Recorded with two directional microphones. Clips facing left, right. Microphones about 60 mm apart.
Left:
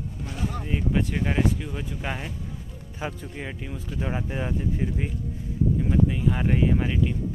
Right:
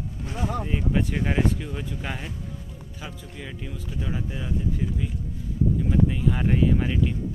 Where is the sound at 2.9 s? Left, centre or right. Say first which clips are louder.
Left 7 dB; left.